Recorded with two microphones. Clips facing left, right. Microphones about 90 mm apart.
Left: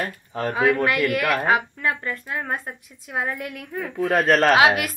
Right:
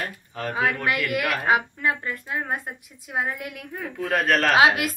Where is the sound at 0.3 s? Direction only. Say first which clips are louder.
Left 5 dB; 30° left (ahead or behind).